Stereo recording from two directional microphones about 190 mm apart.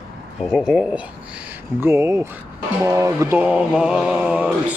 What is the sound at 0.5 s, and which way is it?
Speech, 5° right (ahead or behind).